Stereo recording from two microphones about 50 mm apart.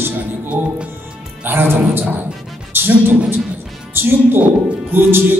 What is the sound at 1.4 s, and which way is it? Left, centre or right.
A man's voice, right.